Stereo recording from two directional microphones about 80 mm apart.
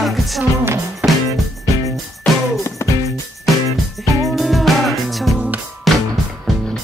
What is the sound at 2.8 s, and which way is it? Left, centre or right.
Music, left.